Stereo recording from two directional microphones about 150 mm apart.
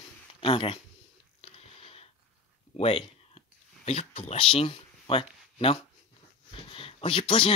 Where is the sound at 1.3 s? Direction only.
40° left (ahead or behind).